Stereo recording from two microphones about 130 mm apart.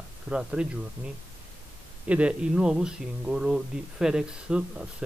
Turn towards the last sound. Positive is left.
turn(degrees=-5)  # may be behind; listen again after turning